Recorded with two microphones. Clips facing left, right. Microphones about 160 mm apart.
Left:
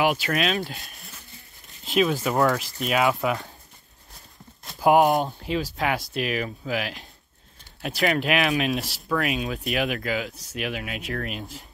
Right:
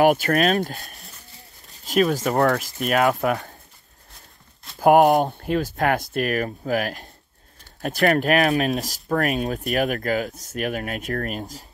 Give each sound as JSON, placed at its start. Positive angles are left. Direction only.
{"t": 0.0, "sound": "speech", "side_deg": -50}
{"t": 2.3, "sound": "speech", "side_deg": -60}
{"t": 4.7, "sound": "speech", "side_deg": -50}